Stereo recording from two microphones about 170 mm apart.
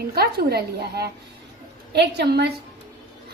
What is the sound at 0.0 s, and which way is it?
A woman's voice, 65° right (ahead or behind).